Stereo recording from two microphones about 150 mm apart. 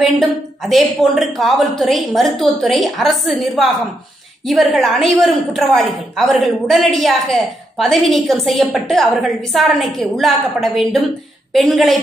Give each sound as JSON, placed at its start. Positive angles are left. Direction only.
{"t": 0.0, "sound": "a woman's voice", "side_deg": 0}